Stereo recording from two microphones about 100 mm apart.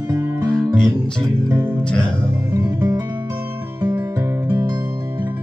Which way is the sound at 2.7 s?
25° right (ahead or behind).